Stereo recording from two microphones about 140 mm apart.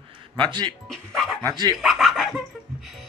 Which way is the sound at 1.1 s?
Centre (ahead or behind).